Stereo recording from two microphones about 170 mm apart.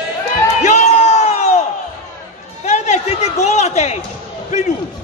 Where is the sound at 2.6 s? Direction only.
40° left (ahead or behind).